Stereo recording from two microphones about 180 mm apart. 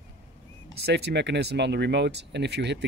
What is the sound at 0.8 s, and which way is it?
Speech, 65° right (ahead or behind).